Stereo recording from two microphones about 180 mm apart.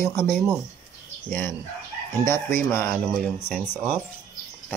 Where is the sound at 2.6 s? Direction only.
15° left (ahead or behind).